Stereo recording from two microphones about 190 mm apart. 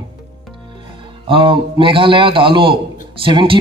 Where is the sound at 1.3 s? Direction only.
25° right (ahead or behind).